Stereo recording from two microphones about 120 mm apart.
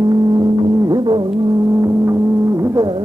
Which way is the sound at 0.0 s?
35° right (ahead or behind).